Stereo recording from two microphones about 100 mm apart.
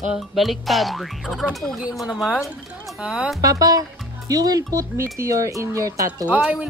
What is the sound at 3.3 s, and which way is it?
Speech, 35° right (ahead or behind).